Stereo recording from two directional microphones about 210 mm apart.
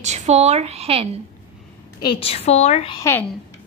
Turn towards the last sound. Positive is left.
turn(degrees=10)  # may be behind; listen again after turning